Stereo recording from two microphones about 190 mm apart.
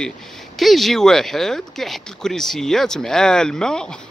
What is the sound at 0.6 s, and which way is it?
Speech, centre (ahead or behind).